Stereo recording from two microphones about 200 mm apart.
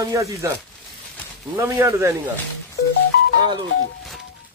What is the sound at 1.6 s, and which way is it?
Speech, 15° right (ahead or behind).